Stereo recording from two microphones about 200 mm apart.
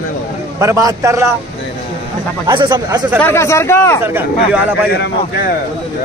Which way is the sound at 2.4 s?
20° right (ahead or behind).